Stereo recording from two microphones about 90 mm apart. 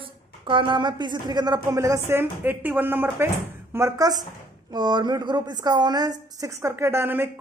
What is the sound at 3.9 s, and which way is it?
Speech, 45° right (ahead or behind).